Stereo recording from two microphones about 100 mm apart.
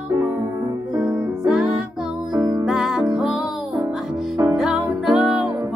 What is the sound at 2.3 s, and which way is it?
Music, 40° right (ahead or behind).